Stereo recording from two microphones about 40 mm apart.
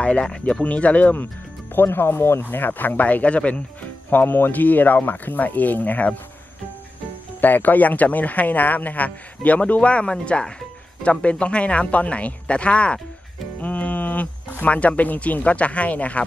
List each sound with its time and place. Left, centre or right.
0.2 s speech: centre
0.7 s speech: left
1.1 s speech: left
2.4 s speech: left
4.1 s speech: left
7.3 s speech: left
13.6 s music: left
14.6 s speech: left